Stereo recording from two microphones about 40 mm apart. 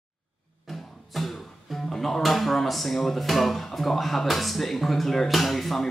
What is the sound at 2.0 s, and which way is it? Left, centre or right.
Speech, centre.